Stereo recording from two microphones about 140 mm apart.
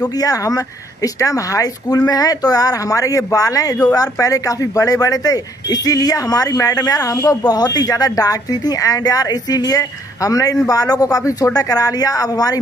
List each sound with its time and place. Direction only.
0.0 s speech: 25° left (ahead or behind)